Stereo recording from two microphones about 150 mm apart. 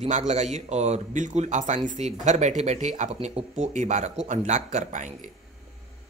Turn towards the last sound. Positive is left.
turn(degrees=-55)  # may be behind; listen again after turning